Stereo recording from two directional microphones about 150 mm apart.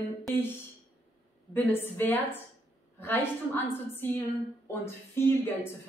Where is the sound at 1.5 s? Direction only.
15° left (ahead or behind).